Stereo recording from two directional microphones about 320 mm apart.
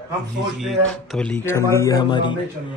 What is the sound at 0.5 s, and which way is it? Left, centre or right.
A man's voice, centre.